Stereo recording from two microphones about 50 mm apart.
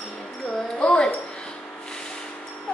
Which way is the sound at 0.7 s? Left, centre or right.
Centre.